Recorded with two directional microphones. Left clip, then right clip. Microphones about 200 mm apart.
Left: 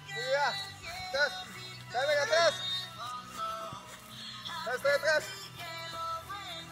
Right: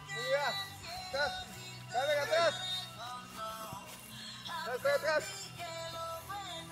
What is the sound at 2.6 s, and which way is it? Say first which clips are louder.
Music: left 3 dB; 60° right (ahead or behind).